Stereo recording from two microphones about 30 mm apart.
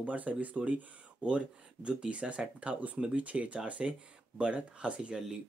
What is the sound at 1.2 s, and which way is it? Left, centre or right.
Speech, right.